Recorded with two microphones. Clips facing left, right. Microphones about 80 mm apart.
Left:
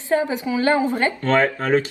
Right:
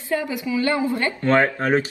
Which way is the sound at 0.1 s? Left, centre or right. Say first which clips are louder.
Left 3 dB; left.